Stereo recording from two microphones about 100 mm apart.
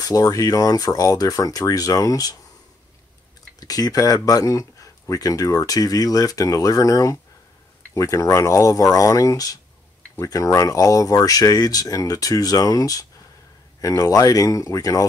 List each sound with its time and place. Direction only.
0.0 s speech: 35° left (ahead or behind)
3.5 s speech: 40° left (ahead or behind)